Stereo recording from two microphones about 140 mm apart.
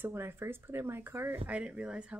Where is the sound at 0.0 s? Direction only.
15° right (ahead or behind).